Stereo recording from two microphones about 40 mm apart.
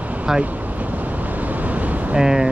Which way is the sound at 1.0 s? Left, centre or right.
Right.